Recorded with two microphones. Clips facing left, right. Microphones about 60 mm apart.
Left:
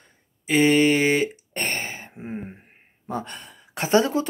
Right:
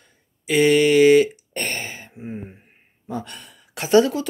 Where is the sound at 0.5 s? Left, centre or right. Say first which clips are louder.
Right 2 dB; left.